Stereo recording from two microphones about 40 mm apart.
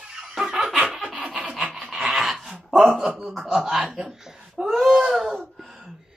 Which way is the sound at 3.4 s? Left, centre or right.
Centre.